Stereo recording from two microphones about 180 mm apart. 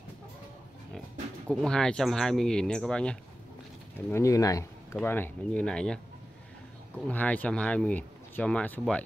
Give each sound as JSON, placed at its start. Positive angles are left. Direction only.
{"t": 1.5, "sound": "speech", "side_deg": 5}
{"t": 4.1, "sound": "speech", "side_deg": 15}
{"t": 7.1, "sound": "speech", "side_deg": 10}